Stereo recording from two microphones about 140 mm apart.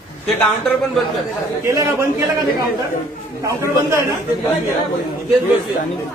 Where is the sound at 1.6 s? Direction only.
20° right (ahead or behind).